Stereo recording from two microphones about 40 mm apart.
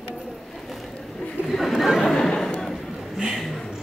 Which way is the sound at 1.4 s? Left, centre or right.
Centre.